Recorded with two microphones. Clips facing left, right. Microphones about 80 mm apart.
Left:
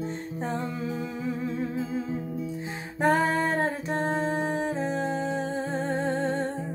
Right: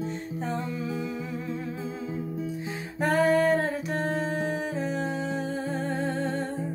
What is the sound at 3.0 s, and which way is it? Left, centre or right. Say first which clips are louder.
Music: right 1 dB; left.